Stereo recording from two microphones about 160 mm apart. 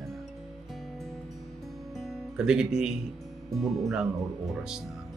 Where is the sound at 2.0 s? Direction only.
5° right (ahead or behind).